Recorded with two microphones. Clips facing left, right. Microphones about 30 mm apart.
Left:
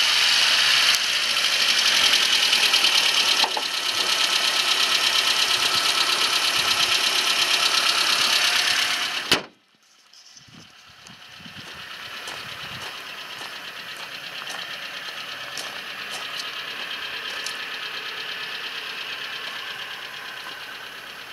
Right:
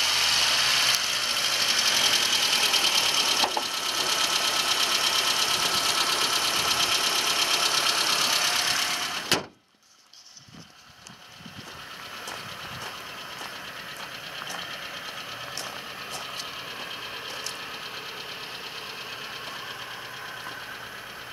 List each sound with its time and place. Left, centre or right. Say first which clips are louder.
0.0 s vehicle: left 5 dB; left
14.3 s vehicle: left 2 dB; centre
17.6 s engine knocking: left 5 dB; left